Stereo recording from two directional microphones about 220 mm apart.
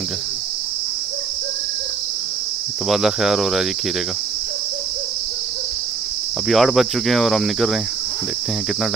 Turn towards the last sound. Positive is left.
turn(degrees=0)  # may be behind; listen again after turning